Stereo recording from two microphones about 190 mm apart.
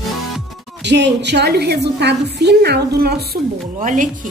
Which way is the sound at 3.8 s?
45° right (ahead or behind).